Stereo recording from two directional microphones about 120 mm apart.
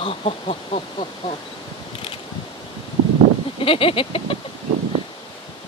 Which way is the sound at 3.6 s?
50° left (ahead or behind).